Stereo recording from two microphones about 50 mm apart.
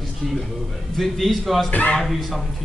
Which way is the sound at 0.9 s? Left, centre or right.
Centre.